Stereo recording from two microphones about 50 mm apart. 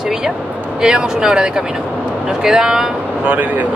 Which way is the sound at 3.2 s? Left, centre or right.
Right.